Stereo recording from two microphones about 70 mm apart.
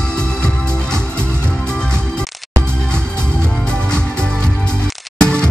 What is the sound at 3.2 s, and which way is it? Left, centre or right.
Music, centre.